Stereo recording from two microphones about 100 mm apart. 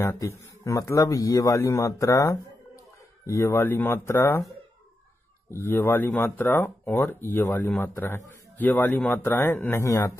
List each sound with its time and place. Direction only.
0.2 s a man's voice: 30° left (ahead or behind)
5.5 s speech: 25° left (ahead or behind)